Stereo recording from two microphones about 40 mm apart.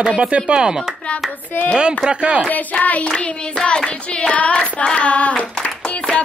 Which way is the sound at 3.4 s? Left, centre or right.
Centre.